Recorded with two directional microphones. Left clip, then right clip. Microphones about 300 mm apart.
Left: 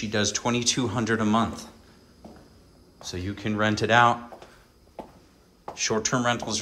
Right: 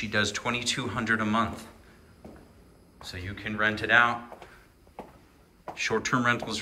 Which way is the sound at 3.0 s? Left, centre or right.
Centre.